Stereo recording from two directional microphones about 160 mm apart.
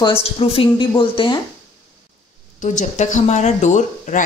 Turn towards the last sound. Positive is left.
turn(degrees=45)  # may be behind; listen again after turning